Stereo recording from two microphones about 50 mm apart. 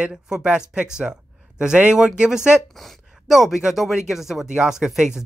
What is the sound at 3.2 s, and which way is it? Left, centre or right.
Speech, centre.